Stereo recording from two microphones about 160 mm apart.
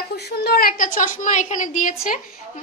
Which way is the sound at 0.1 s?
85° left.